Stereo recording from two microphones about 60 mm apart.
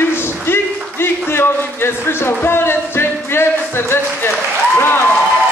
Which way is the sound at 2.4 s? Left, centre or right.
Left.